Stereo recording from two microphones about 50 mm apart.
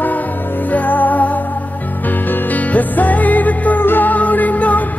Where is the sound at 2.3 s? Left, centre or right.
Left.